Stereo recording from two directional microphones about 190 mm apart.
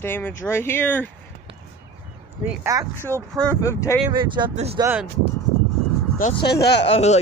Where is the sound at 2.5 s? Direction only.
15° right (ahead or behind).